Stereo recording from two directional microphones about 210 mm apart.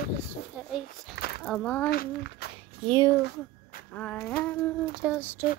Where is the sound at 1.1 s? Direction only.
50° left (ahead or behind).